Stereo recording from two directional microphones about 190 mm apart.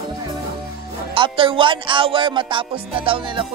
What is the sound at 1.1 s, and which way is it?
Music, 25° right (ahead or behind).